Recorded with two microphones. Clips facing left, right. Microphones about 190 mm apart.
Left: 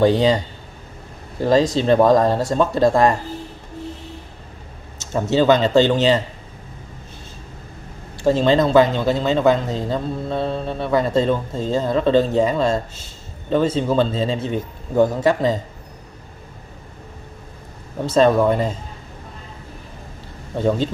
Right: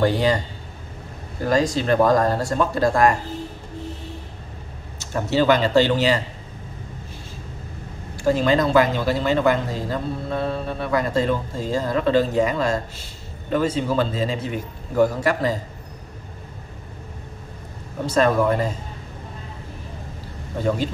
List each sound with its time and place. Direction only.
0.0 s speech: 20° left (ahead or behind)
1.4 s speech: 25° left (ahead or behind)
4.9 s speech: 20° left (ahead or behind)
8.2 s speech: 25° left (ahead or behind)
18.0 s speech: 25° left (ahead or behind)
20.6 s speech: 25° left (ahead or behind)